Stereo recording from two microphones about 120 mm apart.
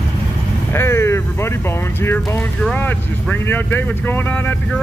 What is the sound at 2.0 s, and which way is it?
Speech, 20° left (ahead or behind).